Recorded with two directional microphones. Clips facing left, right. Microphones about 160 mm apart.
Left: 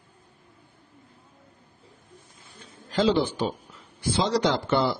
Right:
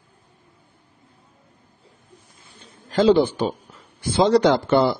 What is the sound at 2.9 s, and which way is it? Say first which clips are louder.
Speech: right 6 dB; 50° right (ahead or behind).